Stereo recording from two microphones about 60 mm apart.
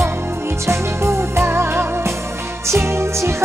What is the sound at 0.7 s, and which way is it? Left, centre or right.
Music, right.